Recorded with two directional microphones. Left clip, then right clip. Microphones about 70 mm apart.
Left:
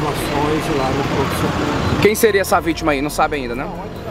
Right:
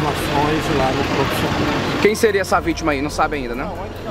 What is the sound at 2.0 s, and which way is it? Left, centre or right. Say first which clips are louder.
Speech: left 2 dB; left.